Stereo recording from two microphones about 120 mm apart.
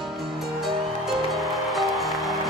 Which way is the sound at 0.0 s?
Centre (ahead or behind).